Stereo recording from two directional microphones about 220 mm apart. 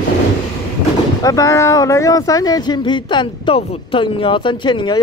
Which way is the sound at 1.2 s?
15° left (ahead or behind).